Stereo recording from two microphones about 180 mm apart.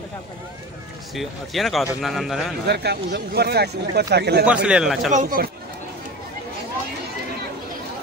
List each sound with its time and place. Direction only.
1.1 s speech: centre (ahead or behind)
2.6 s speech: 65° right (ahead or behind)
4.6 s speech: 5° right (ahead or behind)
5.1 s speech: 50° right (ahead or behind)